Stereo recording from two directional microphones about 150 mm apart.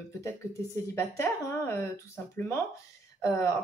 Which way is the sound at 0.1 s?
20° left (ahead or behind).